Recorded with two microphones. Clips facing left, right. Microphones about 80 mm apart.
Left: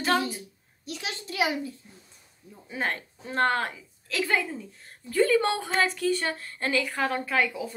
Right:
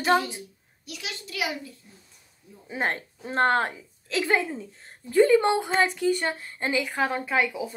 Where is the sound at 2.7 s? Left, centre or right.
Right.